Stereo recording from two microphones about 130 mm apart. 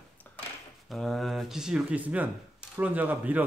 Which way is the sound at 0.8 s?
Centre (ahead or behind).